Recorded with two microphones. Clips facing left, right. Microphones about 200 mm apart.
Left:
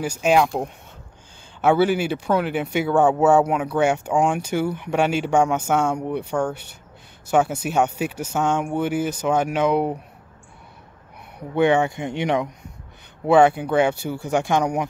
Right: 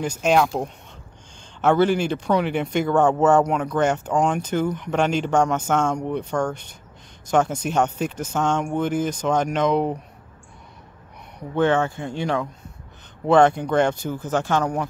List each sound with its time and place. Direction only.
0.0 s speech: 10° left (ahead or behind)
11.3 s speech: 15° left (ahead or behind)
13.3 s speech: 5° left (ahead or behind)